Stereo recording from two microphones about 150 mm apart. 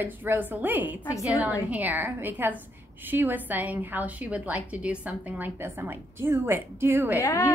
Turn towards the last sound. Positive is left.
turn(degrees=20)  # may be behind; listen again after turning